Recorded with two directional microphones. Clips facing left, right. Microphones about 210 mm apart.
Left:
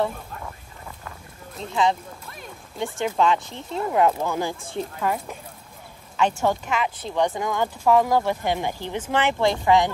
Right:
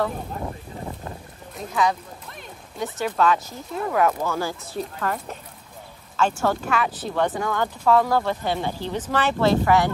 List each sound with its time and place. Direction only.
0.4 s wind noise: 30° right (ahead or behind)
1.6 s speech: 25° left (ahead or behind)
3.2 s speech: 20° left (ahead or behind)